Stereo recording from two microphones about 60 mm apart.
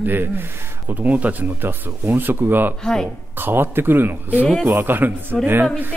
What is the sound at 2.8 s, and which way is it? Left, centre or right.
Speech, centre.